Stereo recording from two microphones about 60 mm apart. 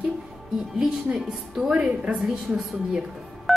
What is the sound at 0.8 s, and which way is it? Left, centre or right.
A woman's voice, centre.